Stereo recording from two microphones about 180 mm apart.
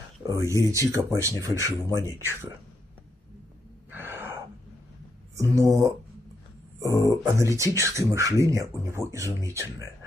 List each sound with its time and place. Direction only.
0.2 s speech: 15° right (ahead or behind)
3.9 s gasp: 10° right (ahead or behind)
5.3 s speech: 15° right (ahead or behind)
6.8 s speech: 15° right (ahead or behind)